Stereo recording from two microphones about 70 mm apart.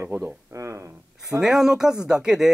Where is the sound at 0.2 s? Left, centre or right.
Right.